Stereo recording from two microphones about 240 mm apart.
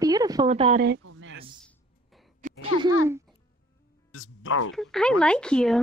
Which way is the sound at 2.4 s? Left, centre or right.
Right.